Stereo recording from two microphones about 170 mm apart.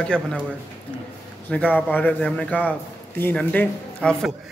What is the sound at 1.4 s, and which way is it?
A man's voice, 10° left (ahead or behind).